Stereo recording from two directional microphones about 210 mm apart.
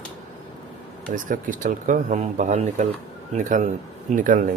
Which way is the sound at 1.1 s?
40° right (ahead or behind).